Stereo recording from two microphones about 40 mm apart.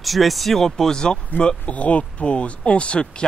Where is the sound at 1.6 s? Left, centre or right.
Left.